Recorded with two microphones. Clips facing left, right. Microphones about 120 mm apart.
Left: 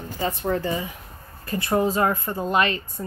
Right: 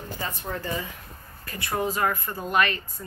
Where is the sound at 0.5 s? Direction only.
25° left (ahead or behind).